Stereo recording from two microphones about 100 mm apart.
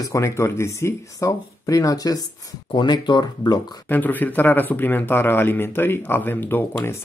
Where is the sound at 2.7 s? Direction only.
50° left (ahead or behind).